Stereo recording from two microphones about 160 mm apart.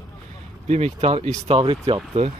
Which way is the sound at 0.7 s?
45° right (ahead or behind).